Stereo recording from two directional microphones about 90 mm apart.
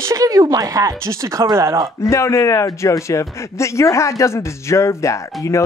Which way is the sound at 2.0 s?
30° left (ahead or behind).